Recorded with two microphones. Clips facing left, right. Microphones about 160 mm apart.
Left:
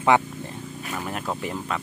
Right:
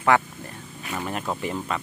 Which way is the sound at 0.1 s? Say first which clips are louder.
Left 1 dB; 20° left (ahead or behind).